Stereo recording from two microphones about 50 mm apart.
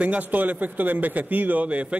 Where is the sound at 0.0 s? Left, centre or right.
Right.